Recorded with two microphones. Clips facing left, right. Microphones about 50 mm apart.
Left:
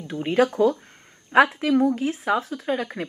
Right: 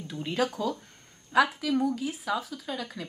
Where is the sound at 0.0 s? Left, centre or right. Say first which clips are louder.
Left 8 dB; left.